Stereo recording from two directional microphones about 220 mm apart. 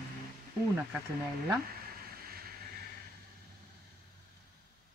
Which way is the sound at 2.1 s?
45° right (ahead or behind).